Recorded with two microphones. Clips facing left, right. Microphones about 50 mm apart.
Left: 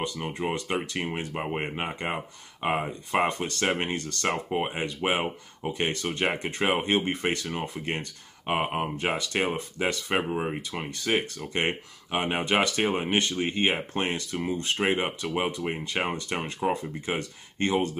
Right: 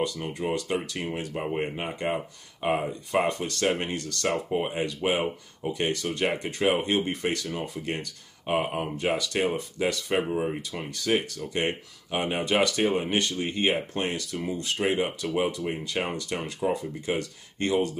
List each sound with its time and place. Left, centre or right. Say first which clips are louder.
0.0 s speech: right 1 dB; left
12.1 s speech: even; left